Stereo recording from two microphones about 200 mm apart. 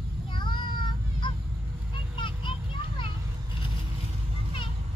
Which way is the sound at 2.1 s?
25° left (ahead or behind).